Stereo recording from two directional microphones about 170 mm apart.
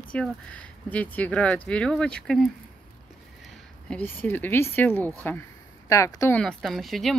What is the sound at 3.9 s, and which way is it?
Speech, 10° left (ahead or behind).